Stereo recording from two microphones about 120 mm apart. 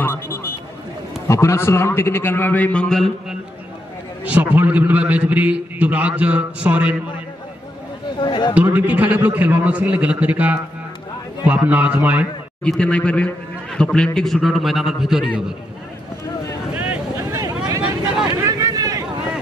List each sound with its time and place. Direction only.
0.0 s a sound: 20° left (ahead or behind)
1.2 s a man's voice: 25° left (ahead or behind); by 3.3 s 5° left (ahead or behind)
4.2 s a man's voice: 15° right (ahead or behind)
8.2 s a man's voice: 40° left (ahead or behind)
8.5 s a man's voice: 10° right (ahead or behind)
12.6 s a man's voice: 10° left (ahead or behind)
16.7 s vehicle: 10° right (ahead or behind)
18.4 s a sound: 30° right (ahead or behind)